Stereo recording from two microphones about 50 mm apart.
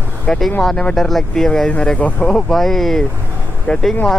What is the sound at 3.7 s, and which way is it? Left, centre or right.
Speech, left.